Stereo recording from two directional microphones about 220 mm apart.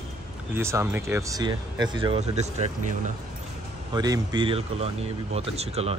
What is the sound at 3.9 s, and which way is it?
Speech, 20° right (ahead or behind).